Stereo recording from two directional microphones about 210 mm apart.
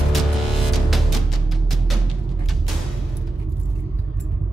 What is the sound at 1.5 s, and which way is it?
Music, centre (ahead or behind).